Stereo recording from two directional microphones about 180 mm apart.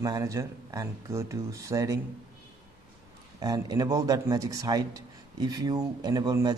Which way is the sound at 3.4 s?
20° right (ahead or behind).